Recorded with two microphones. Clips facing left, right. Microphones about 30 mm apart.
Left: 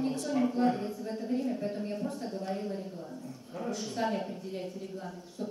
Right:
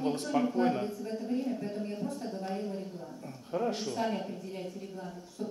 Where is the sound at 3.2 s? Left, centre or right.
Right.